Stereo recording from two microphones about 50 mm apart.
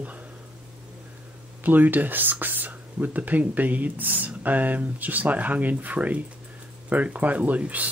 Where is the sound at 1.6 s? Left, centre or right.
Right.